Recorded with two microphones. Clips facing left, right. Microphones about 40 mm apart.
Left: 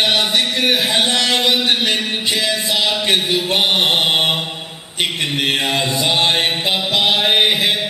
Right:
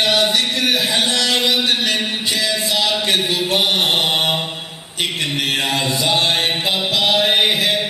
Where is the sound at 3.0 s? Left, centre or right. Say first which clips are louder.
Left 1 dB; left.